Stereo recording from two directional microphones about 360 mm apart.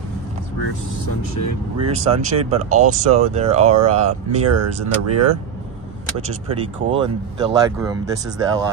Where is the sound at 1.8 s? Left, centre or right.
Centre.